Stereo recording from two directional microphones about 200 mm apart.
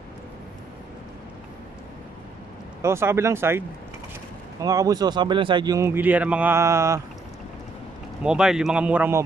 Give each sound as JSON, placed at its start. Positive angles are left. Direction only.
{"t": 2.8, "sound": "a man's voice", "side_deg": -15}
{"t": 8.2, "sound": "speech", "side_deg": -5}